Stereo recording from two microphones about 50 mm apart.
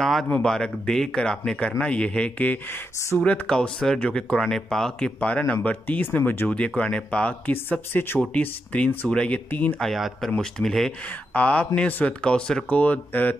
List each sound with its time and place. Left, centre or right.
0.0 s a sound: centre
0.4 s speech: centre; by 2.6 s left
3.4 s speech: centre
5.0 s speech: left
6.5 s speech: left
7.9 s speech: left
8.4 s speech: left
9.1 s speech: centre
9.5 s speech: left
9.8 s speech: centre
11.3 s speech: left
12.6 s speech: left